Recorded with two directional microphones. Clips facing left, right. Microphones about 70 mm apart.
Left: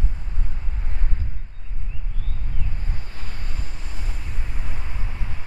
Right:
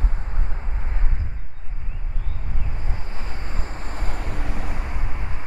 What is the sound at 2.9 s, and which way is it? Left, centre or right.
Vehicle, right.